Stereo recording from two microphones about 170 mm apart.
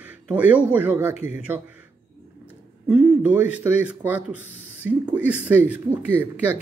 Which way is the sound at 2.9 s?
5° right (ahead or behind).